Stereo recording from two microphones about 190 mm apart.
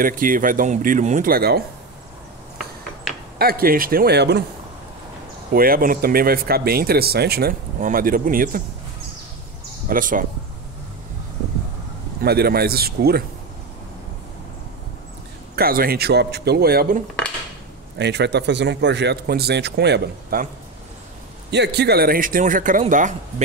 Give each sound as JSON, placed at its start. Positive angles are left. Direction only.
{"t": 0.0, "sound": "speech", "side_deg": -45}
{"t": 3.3, "sound": "speech", "side_deg": -50}
{"t": 5.5, "sound": "speech", "side_deg": -50}
{"t": 9.8, "sound": "speech", "side_deg": -45}
{"t": 12.2, "sound": "a man's voice", "side_deg": -55}
{"t": 15.5, "sound": "a man's voice", "side_deg": -50}
{"t": 21.5, "sound": "speech", "side_deg": -60}